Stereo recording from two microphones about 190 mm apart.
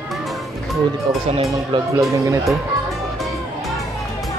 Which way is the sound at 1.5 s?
15° right (ahead or behind).